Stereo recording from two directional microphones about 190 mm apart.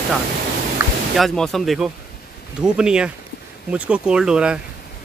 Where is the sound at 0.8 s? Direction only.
10° right (ahead or behind).